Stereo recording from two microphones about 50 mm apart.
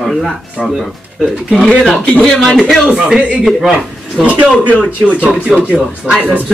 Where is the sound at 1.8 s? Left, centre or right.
Left.